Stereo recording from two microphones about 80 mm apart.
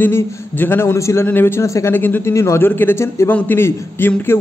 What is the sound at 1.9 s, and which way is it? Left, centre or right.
Speech, left.